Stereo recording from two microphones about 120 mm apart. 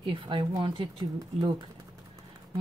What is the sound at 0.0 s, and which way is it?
Speech, 45° right (ahead or behind).